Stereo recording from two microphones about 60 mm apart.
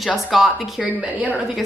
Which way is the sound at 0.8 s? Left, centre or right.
Right.